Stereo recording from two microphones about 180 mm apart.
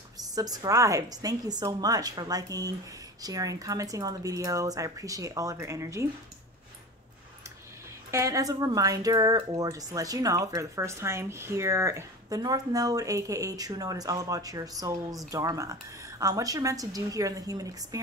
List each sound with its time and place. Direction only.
0.2 s speech: 20° right (ahead or behind)
8.1 s speech: 15° right (ahead or behind)